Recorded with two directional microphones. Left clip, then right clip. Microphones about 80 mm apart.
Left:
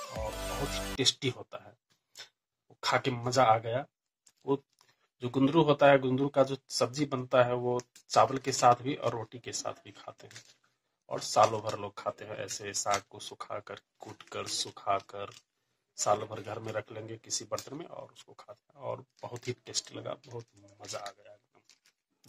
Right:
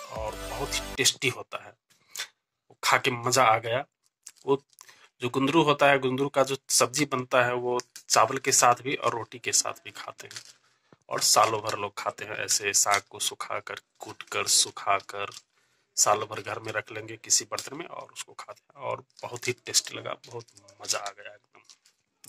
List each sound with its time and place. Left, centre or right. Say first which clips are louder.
0.9 s speech: right 4 dB; left
2.8 s speech: right 6 dB; left
10.0 s speech: right 7 dB; left